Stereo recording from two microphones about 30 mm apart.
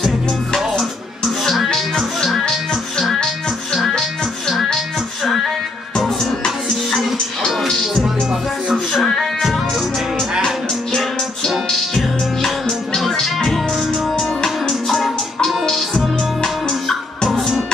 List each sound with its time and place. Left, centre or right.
0.7 s music: left
2.4 s music: centre
4.9 s music: centre
7.7 s music: centre
8.0 s music: right
9.0 s music: centre
13.4 s music: centre
16.6 s music: centre